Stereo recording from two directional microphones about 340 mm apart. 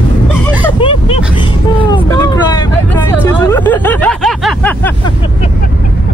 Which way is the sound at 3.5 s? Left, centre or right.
Centre.